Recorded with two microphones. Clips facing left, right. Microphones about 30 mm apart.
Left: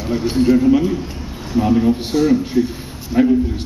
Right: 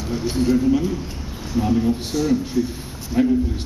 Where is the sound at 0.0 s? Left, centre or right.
Centre.